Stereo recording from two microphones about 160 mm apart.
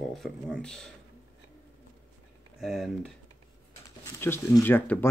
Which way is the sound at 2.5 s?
Centre (ahead or behind).